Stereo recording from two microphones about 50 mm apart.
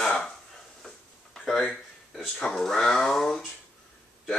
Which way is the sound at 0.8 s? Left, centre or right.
Centre.